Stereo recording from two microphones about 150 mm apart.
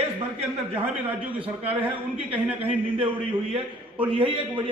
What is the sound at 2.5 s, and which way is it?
A man's voice, 40° right (ahead or behind).